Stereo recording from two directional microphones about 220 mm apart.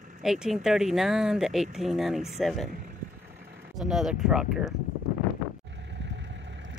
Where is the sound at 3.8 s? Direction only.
Centre (ahead or behind).